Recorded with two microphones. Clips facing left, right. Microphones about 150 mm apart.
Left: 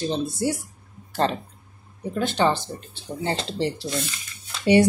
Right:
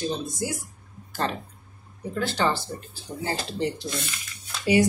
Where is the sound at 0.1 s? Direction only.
30° left (ahead or behind).